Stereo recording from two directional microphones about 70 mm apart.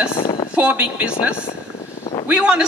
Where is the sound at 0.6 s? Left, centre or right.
Centre.